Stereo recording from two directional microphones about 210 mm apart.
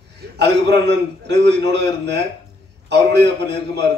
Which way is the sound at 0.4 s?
55° right (ahead or behind).